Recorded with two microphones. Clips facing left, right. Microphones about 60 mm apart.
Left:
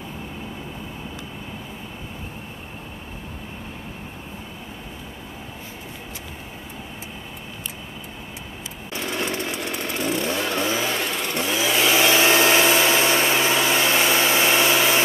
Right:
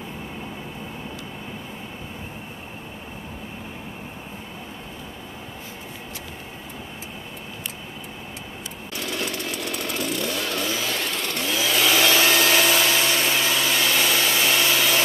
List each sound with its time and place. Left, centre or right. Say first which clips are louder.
8.9 s chainsaw: left 3 dB; left